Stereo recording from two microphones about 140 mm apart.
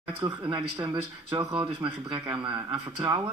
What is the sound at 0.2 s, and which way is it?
A man's voice, 35° right (ahead or behind).